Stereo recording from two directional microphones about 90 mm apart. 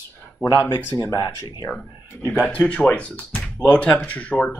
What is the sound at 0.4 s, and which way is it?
Speech, 40° left (ahead or behind).